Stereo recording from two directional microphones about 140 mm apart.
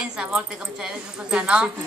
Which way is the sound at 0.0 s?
5° right (ahead or behind).